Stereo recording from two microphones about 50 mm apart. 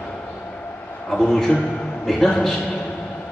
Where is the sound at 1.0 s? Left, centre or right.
Centre.